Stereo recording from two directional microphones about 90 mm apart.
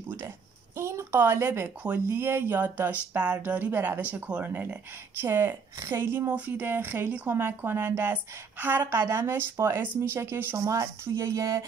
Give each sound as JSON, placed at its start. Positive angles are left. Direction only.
{"t": 0.7, "sound": "speech", "side_deg": -30}
{"t": 6.2, "sound": "speech", "side_deg": -15}